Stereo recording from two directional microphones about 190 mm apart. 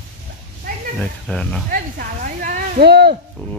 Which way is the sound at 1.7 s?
45° right (ahead or behind).